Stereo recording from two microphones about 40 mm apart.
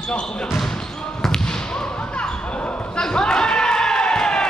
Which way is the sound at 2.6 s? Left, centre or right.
Left.